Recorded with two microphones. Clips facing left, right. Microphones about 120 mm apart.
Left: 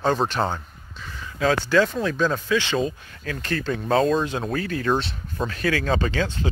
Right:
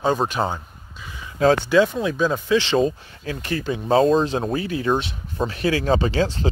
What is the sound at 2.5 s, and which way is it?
Speech, 25° right (ahead or behind).